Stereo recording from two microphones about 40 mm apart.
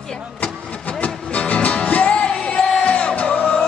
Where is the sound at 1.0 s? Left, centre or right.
Left.